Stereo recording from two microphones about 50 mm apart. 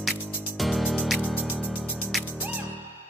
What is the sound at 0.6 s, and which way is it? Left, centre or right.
Music, centre.